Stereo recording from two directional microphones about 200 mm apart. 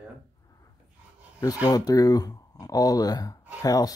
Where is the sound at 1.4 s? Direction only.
20° left (ahead or behind).